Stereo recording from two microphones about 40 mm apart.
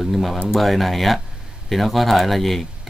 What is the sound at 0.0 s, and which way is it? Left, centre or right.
Speech, centre.